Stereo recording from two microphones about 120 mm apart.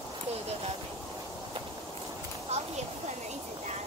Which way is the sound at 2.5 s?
65° right (ahead or behind).